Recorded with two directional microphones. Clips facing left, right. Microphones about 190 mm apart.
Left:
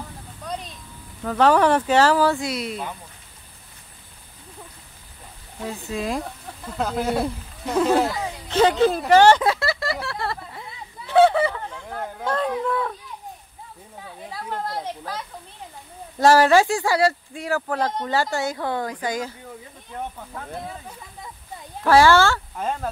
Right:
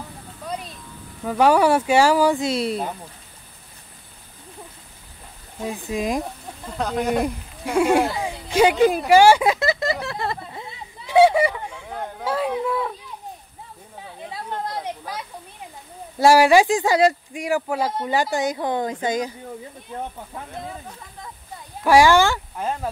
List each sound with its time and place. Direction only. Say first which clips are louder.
1.2 s speech: right 1 dB; 10° right (ahead or behind); by 2.9 s 35° right (ahead or behind)
5.6 s speech: right 3 dB; 15° right (ahead or behind)
6.8 s speech: right 1 dB; centre (ahead or behind)
7.2 s speech: right 1 dB; 10° right (ahead or behind)
11.1 s a sound: right 1 dB; 10° right (ahead or behind)
12.0 s speech: even; 5° right (ahead or behind)
14.3 s speech: even; 20° right (ahead or behind)
20.3 s speech: even; 20° right (ahead or behind)
21.8 s speech: right 1 dB; 15° right (ahead or behind)